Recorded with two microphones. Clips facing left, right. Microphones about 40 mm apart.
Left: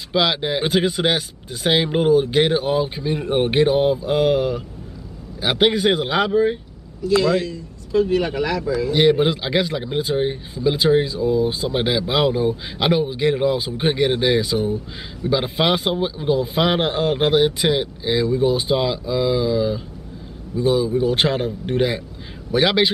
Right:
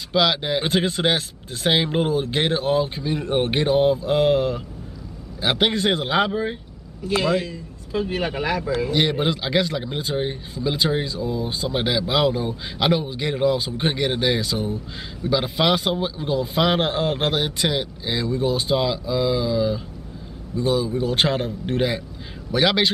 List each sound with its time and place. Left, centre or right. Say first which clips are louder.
0.1 s speech: left 1 dB; centre
7.0 s a man's voice: left 5 dB; right
7.2 s speech: left 2 dB; centre
8.9 s a man's voice: left 7 dB; centre